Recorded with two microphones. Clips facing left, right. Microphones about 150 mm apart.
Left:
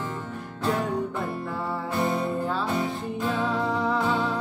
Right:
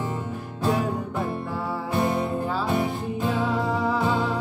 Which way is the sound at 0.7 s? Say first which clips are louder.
Right 1 dB; 5° right (ahead or behind).